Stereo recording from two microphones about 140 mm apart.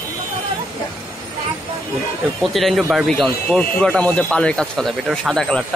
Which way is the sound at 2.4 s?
Centre (ahead or behind).